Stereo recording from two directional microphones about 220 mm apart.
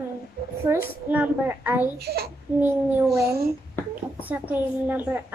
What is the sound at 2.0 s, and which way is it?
Speech, 45° right (ahead or behind).